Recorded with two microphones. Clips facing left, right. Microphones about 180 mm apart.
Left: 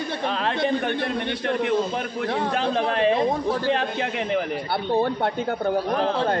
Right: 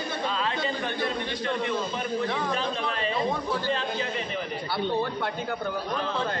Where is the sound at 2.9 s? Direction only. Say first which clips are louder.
Left 9 dB; 65° left (ahead or behind).